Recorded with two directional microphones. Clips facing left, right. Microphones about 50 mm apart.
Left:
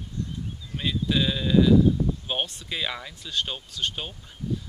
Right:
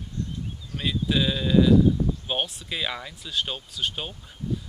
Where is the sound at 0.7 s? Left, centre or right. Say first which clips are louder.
Even; centre.